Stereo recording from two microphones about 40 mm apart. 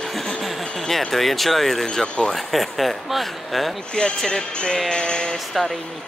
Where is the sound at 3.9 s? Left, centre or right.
Left.